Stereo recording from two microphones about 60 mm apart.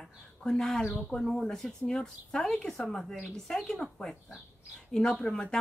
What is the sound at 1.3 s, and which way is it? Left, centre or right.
Speech, centre.